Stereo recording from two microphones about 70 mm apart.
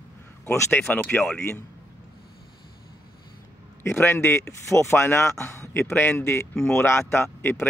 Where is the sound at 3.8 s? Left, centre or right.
Left.